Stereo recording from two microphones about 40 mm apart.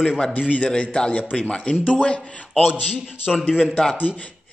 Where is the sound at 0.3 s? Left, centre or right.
Left.